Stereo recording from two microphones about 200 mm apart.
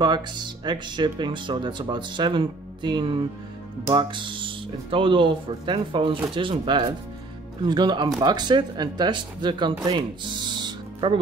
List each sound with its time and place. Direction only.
0.0 s speech: 20° right (ahead or behind)
10.5 s music: 25° right (ahead or behind)